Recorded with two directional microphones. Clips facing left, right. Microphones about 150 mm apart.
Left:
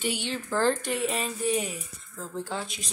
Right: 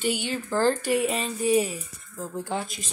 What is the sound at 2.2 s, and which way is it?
Speech, 15° right (ahead or behind).